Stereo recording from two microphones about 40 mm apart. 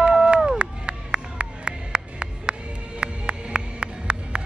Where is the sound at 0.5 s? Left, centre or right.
Right.